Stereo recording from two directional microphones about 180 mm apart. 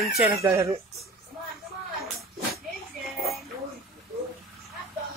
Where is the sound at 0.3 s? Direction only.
15° right (ahead or behind).